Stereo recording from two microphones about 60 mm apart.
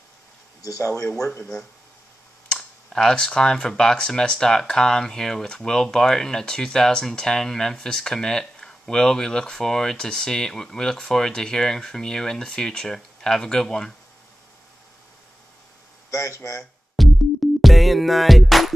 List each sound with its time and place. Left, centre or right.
0.6 s speech: left
1.4 s speech: centre
16.1 s speech: left
17.0 s music: centre